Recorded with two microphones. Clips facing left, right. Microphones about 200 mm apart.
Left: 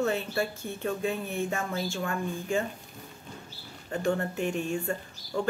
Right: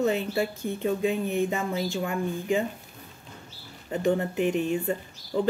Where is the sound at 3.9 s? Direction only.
20° right (ahead or behind).